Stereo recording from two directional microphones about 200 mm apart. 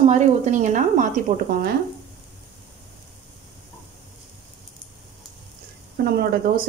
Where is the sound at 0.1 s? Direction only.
35° right (ahead or behind).